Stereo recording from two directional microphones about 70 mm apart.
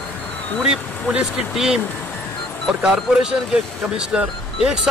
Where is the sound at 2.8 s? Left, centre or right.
Centre.